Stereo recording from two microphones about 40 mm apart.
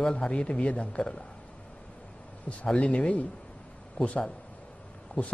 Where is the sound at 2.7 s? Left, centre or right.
Left.